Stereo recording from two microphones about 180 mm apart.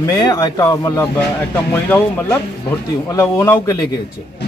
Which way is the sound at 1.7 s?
10° left (ahead or behind).